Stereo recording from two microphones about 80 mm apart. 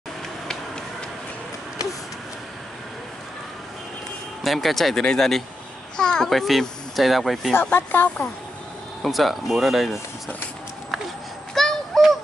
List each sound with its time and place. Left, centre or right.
4.4 s speech: centre
7.7 s speech: left
9.0 s speech: centre
11.5 s synthetic singing: centre